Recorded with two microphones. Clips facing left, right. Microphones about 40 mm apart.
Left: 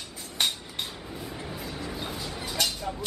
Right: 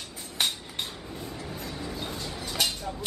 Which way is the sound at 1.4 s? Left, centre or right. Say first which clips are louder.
Left 1 dB; centre.